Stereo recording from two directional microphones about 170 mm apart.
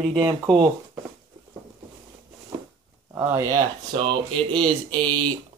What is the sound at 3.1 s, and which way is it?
Speech, 15° right (ahead or behind).